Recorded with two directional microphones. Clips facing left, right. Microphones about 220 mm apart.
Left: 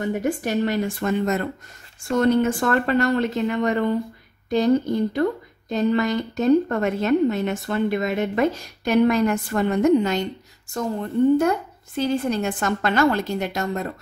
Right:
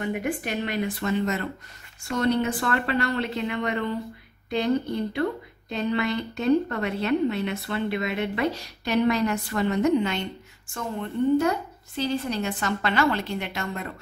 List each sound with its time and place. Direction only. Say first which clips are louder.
0.0 s a woman's voice: left 4 dB; 40° left (ahead or behind)
5.7 s a woman's voice: left 5 dB; 45° left (ahead or behind)